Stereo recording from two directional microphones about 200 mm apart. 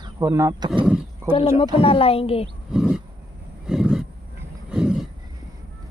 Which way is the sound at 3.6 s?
5° right (ahead or behind).